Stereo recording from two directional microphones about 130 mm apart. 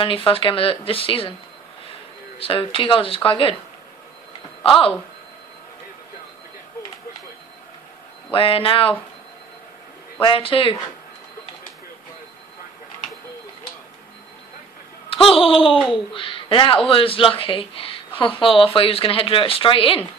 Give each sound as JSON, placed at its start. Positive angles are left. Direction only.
{"t": 0.0, "sound": "speech", "side_deg": 45}
{"t": 2.3, "sound": "speech", "side_deg": 45}
{"t": 4.6, "sound": "speech", "side_deg": 40}
{"t": 8.3, "sound": "speech", "side_deg": 45}
{"t": 10.2, "sound": "speech", "side_deg": 45}
{"t": 15.3, "sound": "speech", "side_deg": 45}